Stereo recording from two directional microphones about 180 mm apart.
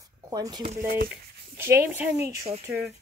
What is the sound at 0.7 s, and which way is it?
Speech, 55° right (ahead or behind).